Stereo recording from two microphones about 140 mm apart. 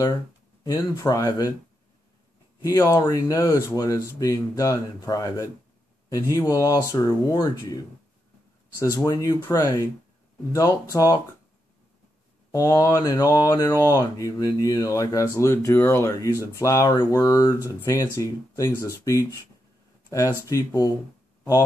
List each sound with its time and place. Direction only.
0.7 s speech: 25° left (ahead or behind)
2.6 s speech: 20° left (ahead or behind)
8.7 s speech: 25° left (ahead or behind)
12.5 s speech: 25° left (ahead or behind)
20.4 s speech: 25° left (ahead or behind)